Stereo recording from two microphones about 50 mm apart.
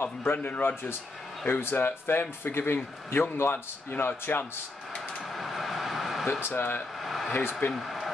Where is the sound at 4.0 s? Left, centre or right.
Left.